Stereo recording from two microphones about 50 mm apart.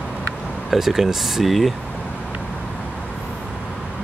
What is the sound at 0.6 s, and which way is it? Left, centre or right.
Speech, centre.